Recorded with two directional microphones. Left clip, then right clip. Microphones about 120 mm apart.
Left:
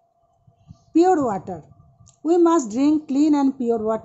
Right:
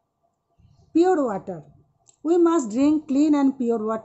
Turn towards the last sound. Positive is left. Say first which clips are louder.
# left 2 dB
turn(degrees=10)  # may be behind; listen again after turning